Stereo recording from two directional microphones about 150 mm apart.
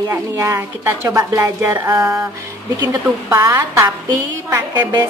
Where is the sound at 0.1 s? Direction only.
20° right (ahead or behind).